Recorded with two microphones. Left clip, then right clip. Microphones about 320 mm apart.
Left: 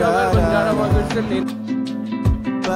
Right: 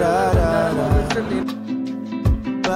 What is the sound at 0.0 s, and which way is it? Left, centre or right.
Music, centre.